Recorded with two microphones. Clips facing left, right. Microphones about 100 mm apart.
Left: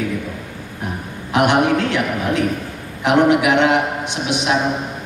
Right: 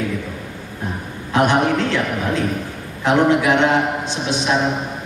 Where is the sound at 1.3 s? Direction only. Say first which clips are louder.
Left 1 dB; 15° left (ahead or behind).